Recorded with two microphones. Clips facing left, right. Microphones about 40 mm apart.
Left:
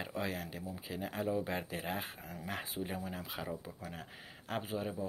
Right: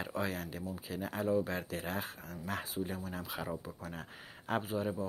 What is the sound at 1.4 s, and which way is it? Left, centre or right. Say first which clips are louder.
Speech: right 1 dB; centre.